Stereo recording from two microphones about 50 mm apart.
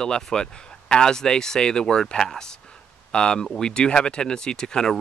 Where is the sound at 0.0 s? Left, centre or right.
Centre.